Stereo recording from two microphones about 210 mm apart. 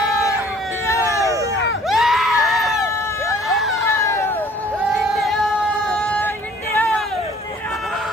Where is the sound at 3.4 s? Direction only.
Centre (ahead or behind).